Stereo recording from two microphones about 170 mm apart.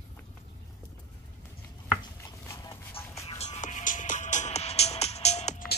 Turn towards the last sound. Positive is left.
turn(degrees=40)  # may be behind; listen again after turning